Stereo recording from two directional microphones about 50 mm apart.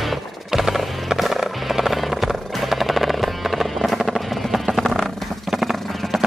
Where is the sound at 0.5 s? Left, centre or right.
Centre.